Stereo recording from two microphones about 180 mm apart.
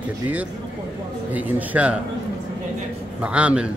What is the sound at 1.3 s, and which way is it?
Speech, 10° right (ahead or behind).